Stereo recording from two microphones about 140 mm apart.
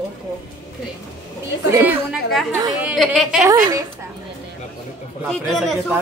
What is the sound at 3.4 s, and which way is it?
Speech, 30° right (ahead or behind).